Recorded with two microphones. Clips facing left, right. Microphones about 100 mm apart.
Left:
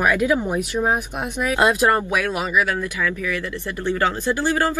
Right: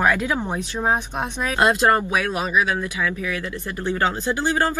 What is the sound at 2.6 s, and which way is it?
Speech, 15° right (ahead or behind).